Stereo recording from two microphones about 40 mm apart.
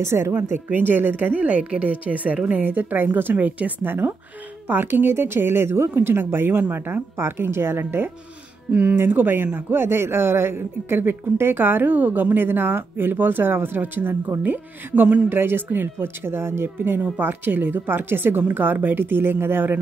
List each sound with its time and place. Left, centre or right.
0.1 s speech: right
0.7 s a woman's voice: right
2.6 s a woman's voice: right
3.4 s a woman's voice: right
3.8 s a man's voice: right
6.7 s speech: right
8.9 s a man's voice: right
15.2 s speech: right
16.7 s a man's voice: right